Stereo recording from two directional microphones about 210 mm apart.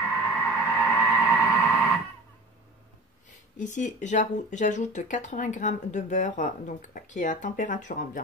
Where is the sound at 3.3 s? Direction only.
35° left (ahead or behind).